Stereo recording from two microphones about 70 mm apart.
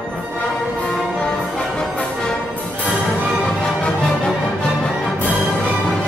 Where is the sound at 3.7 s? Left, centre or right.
Centre.